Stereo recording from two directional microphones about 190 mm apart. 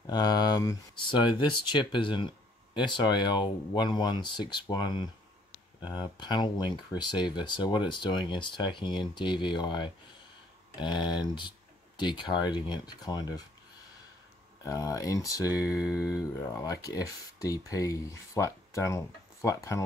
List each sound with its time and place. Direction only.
0.0 s speech: 20° left (ahead or behind)
14.6 s speech: 20° left (ahead or behind)